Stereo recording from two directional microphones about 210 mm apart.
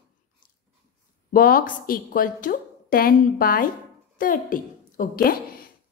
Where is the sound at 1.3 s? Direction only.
45° left (ahead or behind).